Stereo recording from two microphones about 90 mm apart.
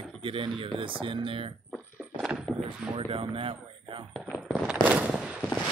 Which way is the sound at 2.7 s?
90° right.